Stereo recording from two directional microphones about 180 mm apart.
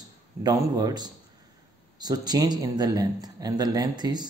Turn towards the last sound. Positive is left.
turn(degrees=-20)  # may be behind; listen again after turning